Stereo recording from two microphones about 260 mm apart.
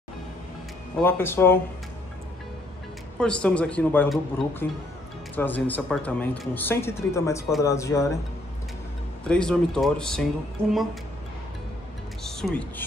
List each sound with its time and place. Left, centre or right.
1.0 s speech: centre
3.2 s speech: centre
9.2 s speech: centre
12.2 s speech: centre